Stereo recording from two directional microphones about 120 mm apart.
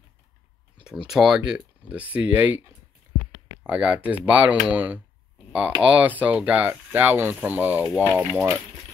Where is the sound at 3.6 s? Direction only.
10° right (ahead or behind).